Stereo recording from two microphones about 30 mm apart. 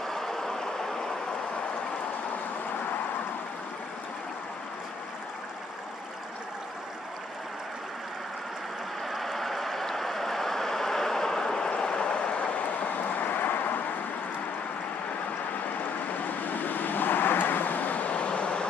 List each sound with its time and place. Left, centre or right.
0.0 s vehicle: centre
9.1 s a sound: centre
9.8 s vehicle: centre; by 12.6 s left
12.8 s vehicle: left
15.8 s vehicle: left
18.1 s vehicle: left